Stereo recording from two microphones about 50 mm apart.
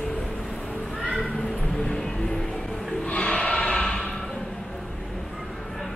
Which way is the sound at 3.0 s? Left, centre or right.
Left.